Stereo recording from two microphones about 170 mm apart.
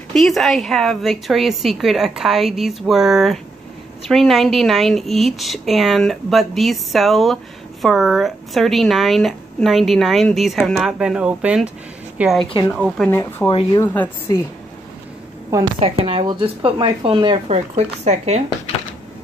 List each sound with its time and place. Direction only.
0.1 s a woman's voice: centre (ahead or behind)
13.1 s speech: 10° left (ahead or behind)
15.8 s speech: 35° right (ahead or behind)